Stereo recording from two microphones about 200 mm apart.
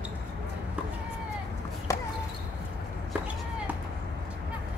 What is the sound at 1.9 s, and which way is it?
Basketball bounce, 15° left (ahead or behind).